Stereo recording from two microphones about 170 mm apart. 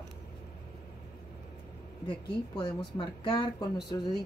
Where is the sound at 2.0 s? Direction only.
30° left (ahead or behind).